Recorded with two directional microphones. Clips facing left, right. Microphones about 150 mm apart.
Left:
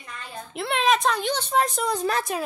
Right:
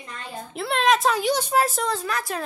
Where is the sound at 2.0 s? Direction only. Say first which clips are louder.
Left 4 dB; 30° left (ahead or behind).